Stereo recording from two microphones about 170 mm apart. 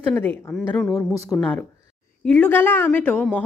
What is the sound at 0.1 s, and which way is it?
Speech, 10° left (ahead or behind).